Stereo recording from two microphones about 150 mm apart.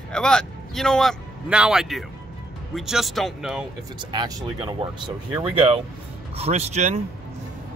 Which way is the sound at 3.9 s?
30° right (ahead or behind).